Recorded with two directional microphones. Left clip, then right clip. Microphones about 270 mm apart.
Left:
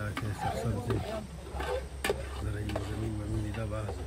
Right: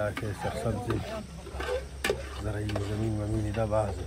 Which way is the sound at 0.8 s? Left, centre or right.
Left.